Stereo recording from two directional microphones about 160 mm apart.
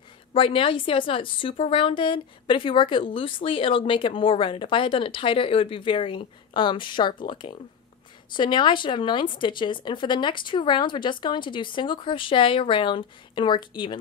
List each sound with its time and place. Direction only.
0.3 s a woman's voice: 35° left (ahead or behind)